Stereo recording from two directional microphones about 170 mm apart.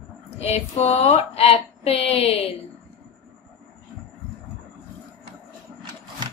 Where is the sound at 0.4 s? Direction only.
40° left (ahead or behind).